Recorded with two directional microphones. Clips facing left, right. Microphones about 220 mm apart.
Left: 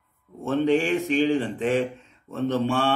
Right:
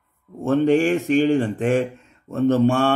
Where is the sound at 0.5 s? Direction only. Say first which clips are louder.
Right 4 dB; 45° right (ahead or behind).